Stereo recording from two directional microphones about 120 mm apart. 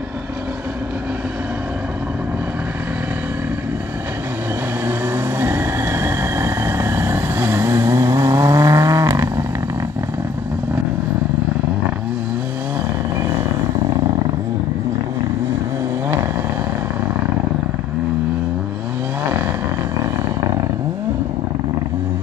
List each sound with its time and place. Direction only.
4.8 s vehicle: 20° right (ahead or behind)